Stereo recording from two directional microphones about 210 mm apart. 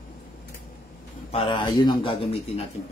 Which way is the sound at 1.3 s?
25° left (ahead or behind).